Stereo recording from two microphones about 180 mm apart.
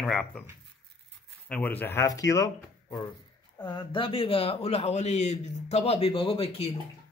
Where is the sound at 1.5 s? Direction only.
10° left (ahead or behind); by 6.7 s 30° left (ahead or behind).